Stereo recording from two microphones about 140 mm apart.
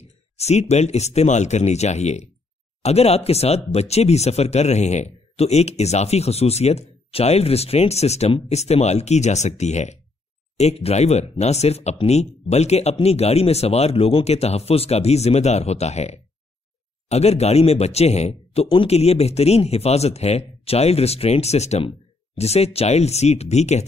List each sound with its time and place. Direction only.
0.4 s speech: 50° left (ahead or behind)